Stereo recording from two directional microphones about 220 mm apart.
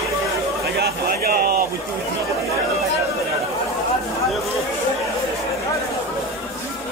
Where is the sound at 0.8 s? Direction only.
45° right (ahead or behind).